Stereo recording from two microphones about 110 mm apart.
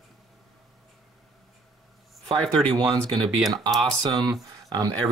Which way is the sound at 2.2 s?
5° left (ahead or behind).